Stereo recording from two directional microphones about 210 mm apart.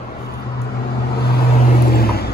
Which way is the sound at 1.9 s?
50° left (ahead or behind).